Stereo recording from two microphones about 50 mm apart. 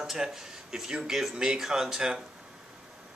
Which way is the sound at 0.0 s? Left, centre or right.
Centre.